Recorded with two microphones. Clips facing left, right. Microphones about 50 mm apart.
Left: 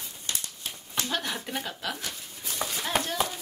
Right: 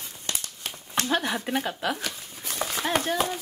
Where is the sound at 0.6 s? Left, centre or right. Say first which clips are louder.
Right 3 dB; right.